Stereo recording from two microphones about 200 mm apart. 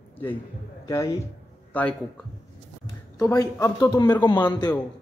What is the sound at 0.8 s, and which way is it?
A man's voice, 15° left (ahead or behind).